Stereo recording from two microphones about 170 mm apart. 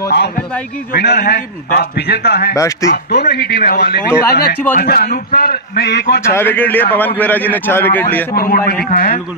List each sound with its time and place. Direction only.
0.1 s a man's voice: 75° left (ahead or behind)
2.5 s speech: 20° left (ahead or behind)
3.1 s a man's voice: 70° left (ahead or behind)
6.2 s a man's voice: 15° left (ahead or behind)
8.4 s a man's voice: 60° left (ahead or behind)